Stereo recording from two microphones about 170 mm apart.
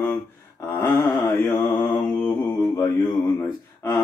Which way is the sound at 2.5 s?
20° left (ahead or behind).